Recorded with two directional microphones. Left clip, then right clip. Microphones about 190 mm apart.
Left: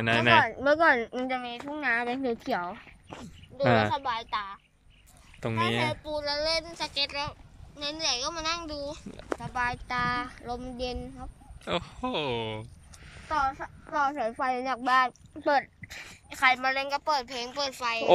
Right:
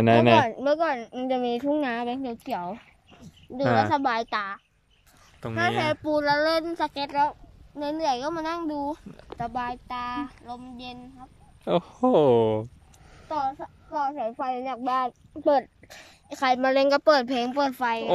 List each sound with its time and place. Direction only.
0.0 s speech: 25° right (ahead or behind)
0.7 s speech: centre (ahead or behind)
1.3 s speech: 35° right (ahead or behind)
2.0 s speech: 5° right (ahead or behind)
3.9 s speech: 60° right (ahead or behind)
5.6 s a child's voice: 55° right (ahead or behind)
9.7 s speech: 10° right (ahead or behind)
11.6 s speech: 25° right (ahead or behind)
13.3 s speech: 20° right (ahead or behind)
13.9 s a child's voice: 10° right (ahead or behind)
16.3 s speech: 40° right (ahead or behind)
16.7 s a child's voice: 55° right (ahead or behind)